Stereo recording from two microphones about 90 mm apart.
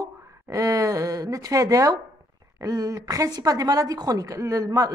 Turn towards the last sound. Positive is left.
turn(degrees=-40)  # may be behind; listen again after turning